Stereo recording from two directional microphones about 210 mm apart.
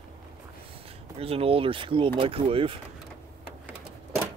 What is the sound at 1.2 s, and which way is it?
Speech, 25° right (ahead or behind).